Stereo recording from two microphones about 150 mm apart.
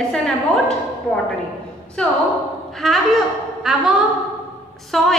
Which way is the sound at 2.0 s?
5° left (ahead or behind).